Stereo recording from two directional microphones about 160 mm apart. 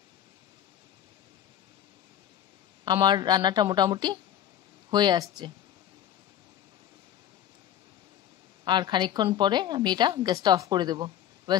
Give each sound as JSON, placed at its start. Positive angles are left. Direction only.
{"t": 2.8, "sound": "a woman's voice", "side_deg": -25}
{"t": 8.6, "sound": "a woman's voice", "side_deg": -25}